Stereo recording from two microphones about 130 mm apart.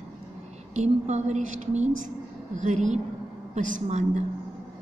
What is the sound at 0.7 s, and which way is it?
A woman's voice, 65° right (ahead or behind).